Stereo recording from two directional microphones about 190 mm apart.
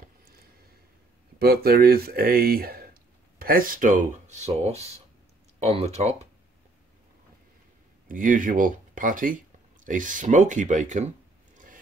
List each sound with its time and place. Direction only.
1.4 s speech: 55° right (ahead or behind); by 6.1 s 35° right (ahead or behind)
8.1 s speech: 45° right (ahead or behind)
11.5 s a sound: 45° right (ahead or behind)